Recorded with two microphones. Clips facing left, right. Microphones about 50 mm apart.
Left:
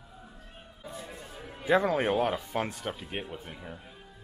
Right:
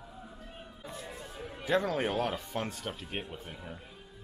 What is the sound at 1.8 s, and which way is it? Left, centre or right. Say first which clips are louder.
Speech: left 3 dB; centre.